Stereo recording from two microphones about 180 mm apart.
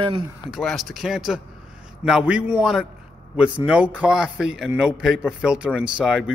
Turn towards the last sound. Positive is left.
turn(degrees=-5)  # may be behind; listen again after turning